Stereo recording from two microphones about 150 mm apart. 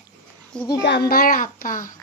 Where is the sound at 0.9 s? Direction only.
85° left; by 1.9 s 60° left (ahead or behind).